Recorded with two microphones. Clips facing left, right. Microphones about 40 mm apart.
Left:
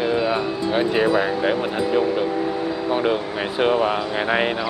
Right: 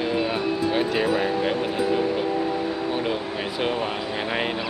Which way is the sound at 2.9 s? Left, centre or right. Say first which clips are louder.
Left 5 dB; centre.